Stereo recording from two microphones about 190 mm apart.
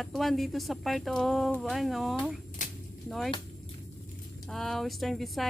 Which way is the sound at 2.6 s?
40° left (ahead or behind).